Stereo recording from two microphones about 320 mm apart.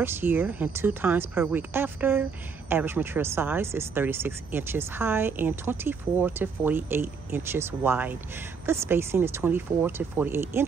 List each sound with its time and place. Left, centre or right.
0.0 s speech: centre